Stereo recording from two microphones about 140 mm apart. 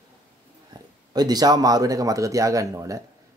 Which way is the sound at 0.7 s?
30° right (ahead or behind).